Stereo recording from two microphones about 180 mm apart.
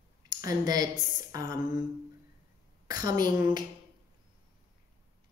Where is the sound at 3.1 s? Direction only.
50° left (ahead or behind).